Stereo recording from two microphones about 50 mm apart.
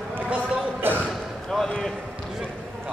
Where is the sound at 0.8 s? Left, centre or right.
Right.